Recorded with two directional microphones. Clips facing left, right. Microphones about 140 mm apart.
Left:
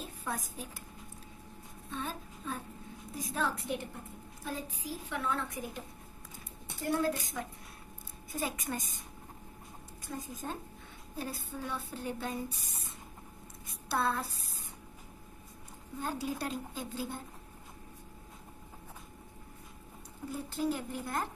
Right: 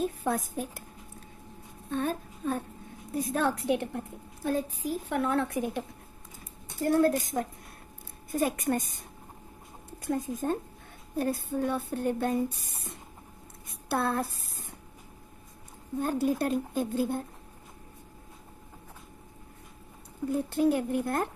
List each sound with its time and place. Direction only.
0.0 s a woman's voice: 60° right (ahead or behind)
1.9 s a woman's voice: 60° right (ahead or behind)
6.8 s a woman's voice: 50° right (ahead or behind)
10.0 s a woman's voice: 65° right (ahead or behind)
16.0 s a woman's voice: 50° right (ahead or behind)
20.2 s a woman's voice: 60° right (ahead or behind)